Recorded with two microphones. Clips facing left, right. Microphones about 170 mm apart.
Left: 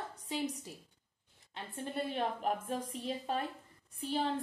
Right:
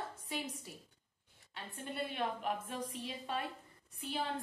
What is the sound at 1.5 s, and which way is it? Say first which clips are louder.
Speech: left 4 dB; 25° left (ahead or behind).